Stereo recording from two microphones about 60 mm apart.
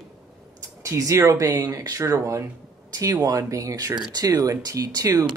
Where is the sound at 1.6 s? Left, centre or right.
Right.